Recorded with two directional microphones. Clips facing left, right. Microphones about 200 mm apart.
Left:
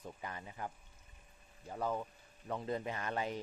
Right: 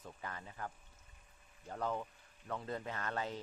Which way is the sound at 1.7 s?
10° left (ahead or behind).